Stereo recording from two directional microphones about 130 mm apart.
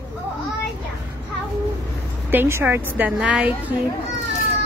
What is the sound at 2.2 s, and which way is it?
A woman's voice, 20° right (ahead or behind).